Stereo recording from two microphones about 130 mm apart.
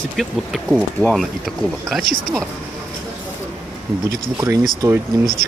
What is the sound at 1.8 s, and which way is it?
Speech, centre (ahead or behind).